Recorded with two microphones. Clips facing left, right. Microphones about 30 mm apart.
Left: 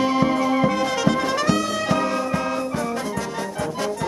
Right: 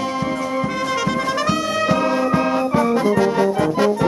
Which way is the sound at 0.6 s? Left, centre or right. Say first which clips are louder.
Left 1 dB; centre.